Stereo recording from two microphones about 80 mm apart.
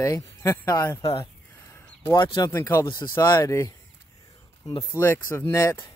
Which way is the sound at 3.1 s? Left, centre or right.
Left.